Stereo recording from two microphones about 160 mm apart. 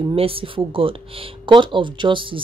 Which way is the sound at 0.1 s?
35° right (ahead or behind).